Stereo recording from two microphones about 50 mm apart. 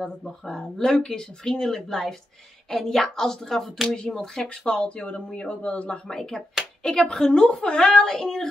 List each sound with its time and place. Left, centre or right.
0.0 s speech: centre
0.6 s a woman's voice: centre
4.6 s speech: left
6.0 s a woman's voice: centre